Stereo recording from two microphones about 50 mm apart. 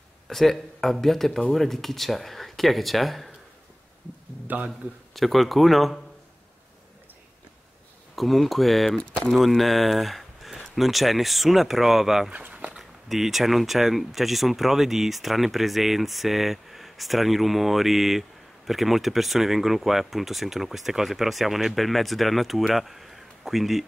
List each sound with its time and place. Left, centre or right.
0.3 s speech: centre
4.5 s a man's voice: right
5.1 s speech: centre
8.2 s speech: centre
12.3 s a sound: right
12.7 s speech: centre